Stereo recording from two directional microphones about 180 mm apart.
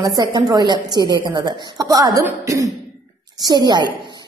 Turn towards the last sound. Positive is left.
turn(degrees=-25)  # may be behind; listen again after turning